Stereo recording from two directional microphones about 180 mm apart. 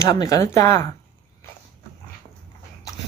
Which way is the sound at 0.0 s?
20° left (ahead or behind).